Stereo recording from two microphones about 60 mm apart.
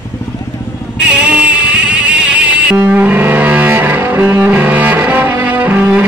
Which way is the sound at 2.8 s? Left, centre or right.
Right.